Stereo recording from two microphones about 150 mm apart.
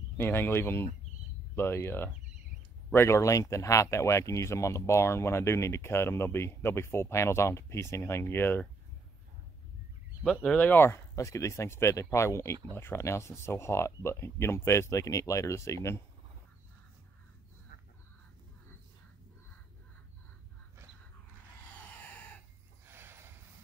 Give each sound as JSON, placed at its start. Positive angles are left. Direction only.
{"t": 0.2, "sound": "speech", "side_deg": 15}
{"t": 10.2, "sound": "speech", "side_deg": 10}
{"t": 22.8, "sound": "a sound", "side_deg": -15}